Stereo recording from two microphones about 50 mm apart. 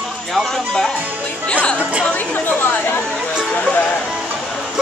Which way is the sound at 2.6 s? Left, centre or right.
Left.